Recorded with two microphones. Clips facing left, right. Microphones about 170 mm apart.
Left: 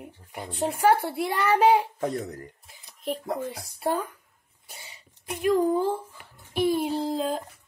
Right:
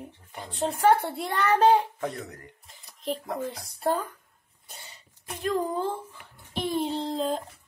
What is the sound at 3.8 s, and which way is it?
Speech, 10° left (ahead or behind).